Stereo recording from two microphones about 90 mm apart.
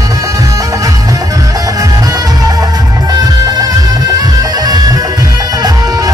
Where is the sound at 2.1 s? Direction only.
45° right (ahead or behind).